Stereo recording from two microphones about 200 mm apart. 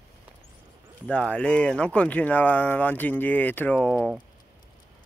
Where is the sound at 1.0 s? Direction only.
5° left (ahead or behind).